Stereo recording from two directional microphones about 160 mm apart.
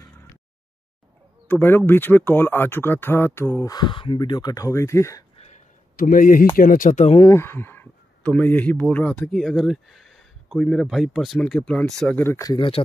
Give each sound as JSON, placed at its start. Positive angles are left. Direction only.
{"t": 1.5, "sound": "speech", "side_deg": 15}
{"t": 5.3, "sound": "a sound", "side_deg": 40}
{"t": 5.9, "sound": "speech", "side_deg": 55}
{"t": 7.2, "sound": "speech", "side_deg": 20}
{"t": 12.2, "sound": "speech", "side_deg": 15}
{"t": 12.5, "sound": "speech", "side_deg": 30}